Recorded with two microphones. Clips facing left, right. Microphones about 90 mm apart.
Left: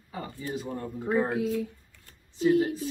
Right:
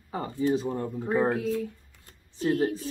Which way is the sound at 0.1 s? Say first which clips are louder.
Right 8 dB; 35° right (ahead or behind).